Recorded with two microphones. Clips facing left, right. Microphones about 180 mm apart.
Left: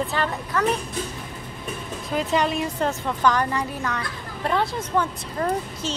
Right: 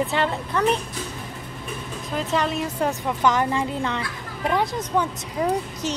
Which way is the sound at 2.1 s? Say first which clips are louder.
Left 1 dB; centre (ahead or behind).